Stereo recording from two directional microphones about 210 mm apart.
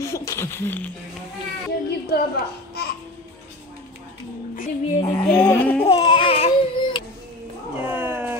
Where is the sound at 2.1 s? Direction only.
50° left (ahead or behind).